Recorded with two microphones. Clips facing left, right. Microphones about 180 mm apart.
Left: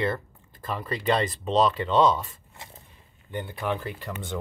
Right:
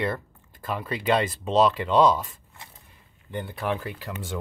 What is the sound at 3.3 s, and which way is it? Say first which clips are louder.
Speech: right 1 dB; centre (ahead or behind).